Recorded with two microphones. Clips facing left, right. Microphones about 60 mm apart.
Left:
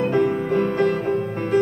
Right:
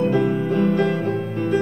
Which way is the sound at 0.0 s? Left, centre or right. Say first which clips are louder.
Even; left.